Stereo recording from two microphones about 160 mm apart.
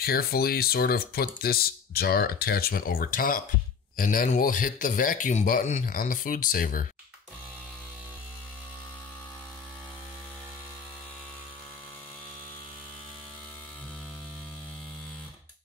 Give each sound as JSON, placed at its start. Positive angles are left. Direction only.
{"t": 0.0, "sound": "speech", "side_deg": 70}